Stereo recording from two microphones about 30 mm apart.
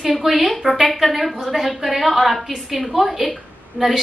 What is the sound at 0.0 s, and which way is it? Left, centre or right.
A woman's voice, centre.